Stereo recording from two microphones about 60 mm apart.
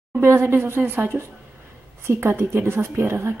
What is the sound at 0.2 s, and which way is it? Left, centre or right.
Speech, right.